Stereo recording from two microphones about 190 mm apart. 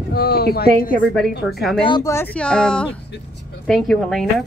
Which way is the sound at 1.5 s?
Centre (ahead or behind).